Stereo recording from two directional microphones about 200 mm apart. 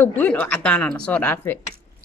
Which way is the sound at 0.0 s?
10° left (ahead or behind).